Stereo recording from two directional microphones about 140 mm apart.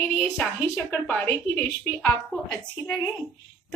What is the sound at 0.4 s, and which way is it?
A woman's voice, 15° left (ahead or behind).